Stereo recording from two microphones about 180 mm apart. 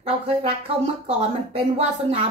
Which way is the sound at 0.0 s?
35° right (ahead or behind).